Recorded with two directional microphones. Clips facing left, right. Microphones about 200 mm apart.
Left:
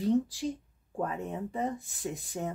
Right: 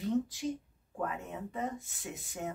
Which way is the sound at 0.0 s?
35° left (ahead or behind).